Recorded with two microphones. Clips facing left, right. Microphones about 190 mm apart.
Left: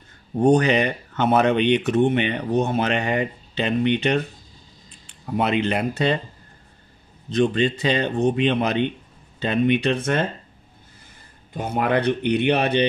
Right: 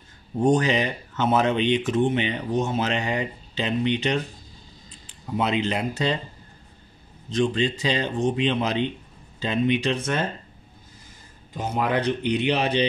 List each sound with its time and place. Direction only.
0.4 s speech: 60° left (ahead or behind)
7.2 s speech: 60° left (ahead or behind)
11.5 s speech: 55° left (ahead or behind)